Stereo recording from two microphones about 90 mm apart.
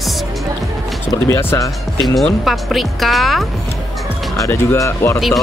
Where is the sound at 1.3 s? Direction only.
30° left (ahead or behind).